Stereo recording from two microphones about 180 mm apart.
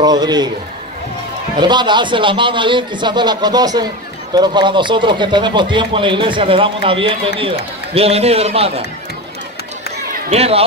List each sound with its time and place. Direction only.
0.0 s speech: 20° right (ahead or behind)
1.6 s speech: 25° right (ahead or behind)
10.3 s speech: 35° right (ahead or behind)